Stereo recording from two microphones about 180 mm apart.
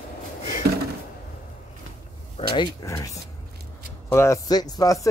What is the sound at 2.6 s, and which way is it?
Speech, 20° left (ahead or behind).